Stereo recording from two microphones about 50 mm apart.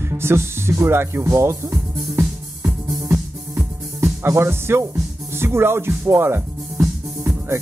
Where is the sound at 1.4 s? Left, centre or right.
Right.